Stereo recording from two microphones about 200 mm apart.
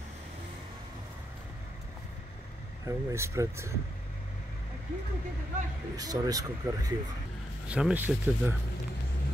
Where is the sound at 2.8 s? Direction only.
15° right (ahead or behind).